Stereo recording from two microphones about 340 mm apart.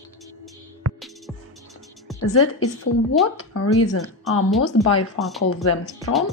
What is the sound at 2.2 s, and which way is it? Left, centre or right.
Speech, left.